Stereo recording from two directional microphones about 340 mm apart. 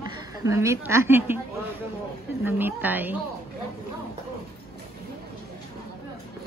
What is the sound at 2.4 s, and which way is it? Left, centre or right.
Speech, centre.